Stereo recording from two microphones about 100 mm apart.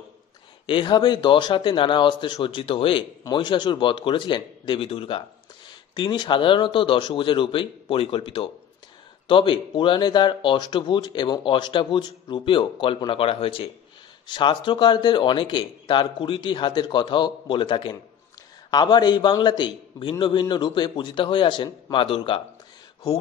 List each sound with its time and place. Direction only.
0.7 s speech: 55° left (ahead or behind)
3.3 s speech: 50° left (ahead or behind); by 5.2 s 65° left (ahead or behind)
5.7 s speech: 50° left (ahead or behind); by 13.7 s 65° left (ahead or behind)
14.2 s speech: 55° left (ahead or behind)
18.7 s speech: 45° left (ahead or behind); by 22.4 s 60° left (ahead or behind)